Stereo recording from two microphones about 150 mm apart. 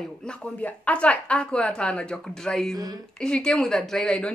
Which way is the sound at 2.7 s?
25° right (ahead or behind).